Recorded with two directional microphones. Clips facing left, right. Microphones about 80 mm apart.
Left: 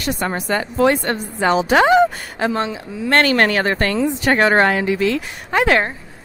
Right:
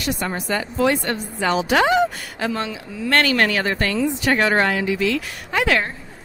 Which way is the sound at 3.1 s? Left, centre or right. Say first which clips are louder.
Left 3 dB; left.